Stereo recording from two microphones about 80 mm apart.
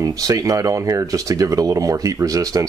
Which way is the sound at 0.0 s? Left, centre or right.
Right.